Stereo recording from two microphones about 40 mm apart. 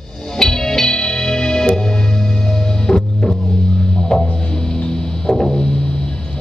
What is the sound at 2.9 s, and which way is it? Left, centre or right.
Music, left.